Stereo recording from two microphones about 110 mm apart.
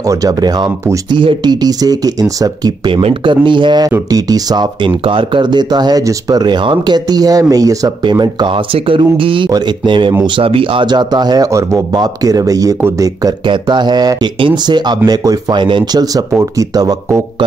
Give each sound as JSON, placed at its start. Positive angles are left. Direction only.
{"t": 0.0, "sound": "speech", "side_deg": -30}
{"t": 2.9, "sound": "speech", "side_deg": -50}
{"t": 8.7, "sound": "speech", "side_deg": -55}
{"t": 13.5, "sound": "speech", "side_deg": -45}